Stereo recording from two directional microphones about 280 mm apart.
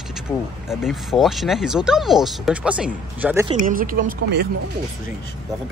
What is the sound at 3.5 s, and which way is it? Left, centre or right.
Speech, right.